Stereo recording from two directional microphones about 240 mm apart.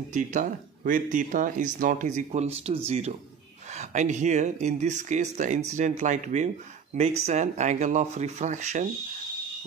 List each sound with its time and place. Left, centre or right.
0.1 s speech: right